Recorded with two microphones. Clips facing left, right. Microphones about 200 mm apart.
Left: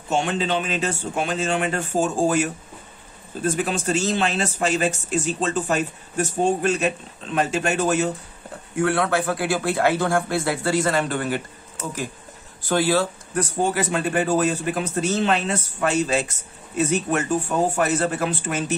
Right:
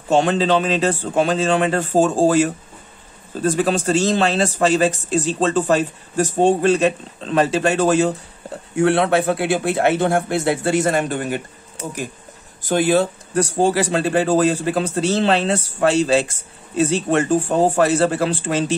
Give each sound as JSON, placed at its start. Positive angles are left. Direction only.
{"t": 0.2, "sound": "speech", "side_deg": -35}
{"t": 8.7, "sound": "a man's voice", "side_deg": -25}